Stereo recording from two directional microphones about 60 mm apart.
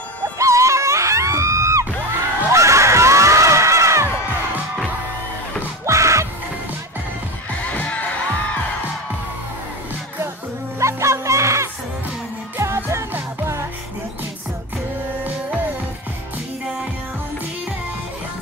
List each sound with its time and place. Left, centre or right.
0.4 s music: right
2.5 s a sound: right
5.9 s music: right
7.7 s music: left
10.8 s music: right